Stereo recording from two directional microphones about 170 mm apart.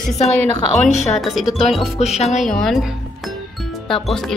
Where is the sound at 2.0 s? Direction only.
40° left (ahead or behind).